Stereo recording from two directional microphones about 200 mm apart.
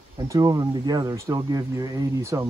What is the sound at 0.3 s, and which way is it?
Speech, 15° right (ahead or behind).